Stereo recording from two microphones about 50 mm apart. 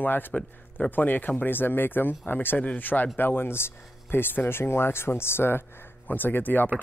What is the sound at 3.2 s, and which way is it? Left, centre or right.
Speech, left.